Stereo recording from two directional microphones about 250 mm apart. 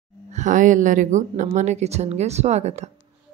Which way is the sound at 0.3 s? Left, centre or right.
Right.